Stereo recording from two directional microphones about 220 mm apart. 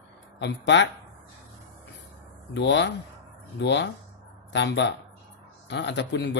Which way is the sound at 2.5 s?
55° left (ahead or behind).